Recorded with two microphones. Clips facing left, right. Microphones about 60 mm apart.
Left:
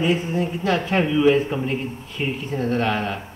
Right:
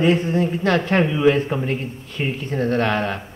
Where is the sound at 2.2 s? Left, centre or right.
Centre.